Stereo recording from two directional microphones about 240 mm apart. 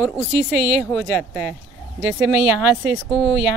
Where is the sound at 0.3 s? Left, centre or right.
Right.